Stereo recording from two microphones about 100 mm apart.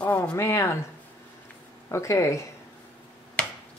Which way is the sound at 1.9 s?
30° left (ahead or behind).